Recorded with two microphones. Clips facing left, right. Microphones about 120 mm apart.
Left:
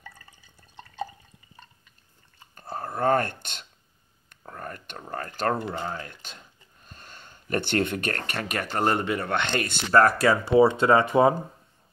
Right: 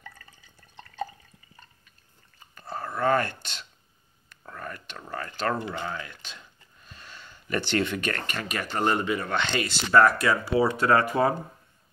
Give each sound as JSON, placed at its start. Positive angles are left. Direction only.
{"t": 2.5, "sound": "whispering", "side_deg": 55}
{"t": 4.4, "sound": "speech", "side_deg": 40}
{"t": 10.4, "sound": "speech", "side_deg": 25}